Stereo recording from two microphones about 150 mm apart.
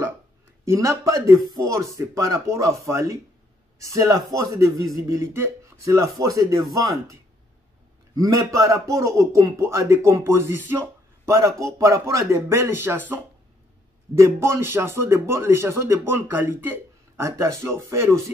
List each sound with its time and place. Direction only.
0.7 s speech: 20° right (ahead or behind)
8.2 s speech: 20° right (ahead or behind)
14.1 s speech: 20° right (ahead or behind)